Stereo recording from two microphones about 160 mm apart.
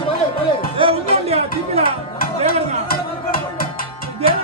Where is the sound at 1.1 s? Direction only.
40° right (ahead or behind).